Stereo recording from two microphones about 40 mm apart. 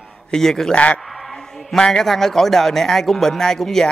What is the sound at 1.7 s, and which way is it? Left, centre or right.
Speech, centre.